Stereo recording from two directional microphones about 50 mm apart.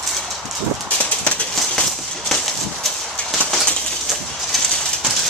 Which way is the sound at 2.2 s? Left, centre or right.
Centre.